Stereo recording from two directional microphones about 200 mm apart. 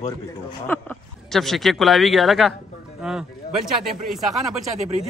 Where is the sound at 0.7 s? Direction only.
5° left (ahead or behind).